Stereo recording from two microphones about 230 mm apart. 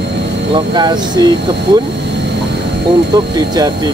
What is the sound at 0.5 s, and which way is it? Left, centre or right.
Speech, centre.